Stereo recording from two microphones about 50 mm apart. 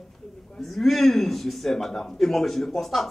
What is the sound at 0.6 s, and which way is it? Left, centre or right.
A man's voice, centre.